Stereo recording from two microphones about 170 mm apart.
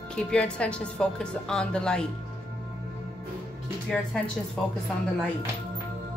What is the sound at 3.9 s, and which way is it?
Speech, 5° left (ahead or behind).